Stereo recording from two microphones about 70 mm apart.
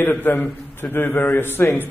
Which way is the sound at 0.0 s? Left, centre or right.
Left.